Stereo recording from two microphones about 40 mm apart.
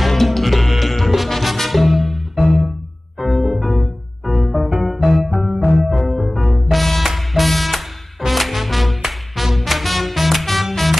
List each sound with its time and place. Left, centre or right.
0.0 s music: centre